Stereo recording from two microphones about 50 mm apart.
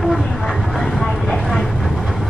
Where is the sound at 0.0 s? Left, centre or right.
Centre.